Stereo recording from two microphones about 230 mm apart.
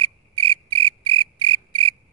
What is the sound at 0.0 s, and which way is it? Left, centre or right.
Cricket, right.